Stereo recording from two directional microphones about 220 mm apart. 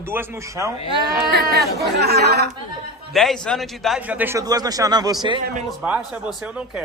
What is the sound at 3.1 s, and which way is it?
A man's voice, centre (ahead or behind).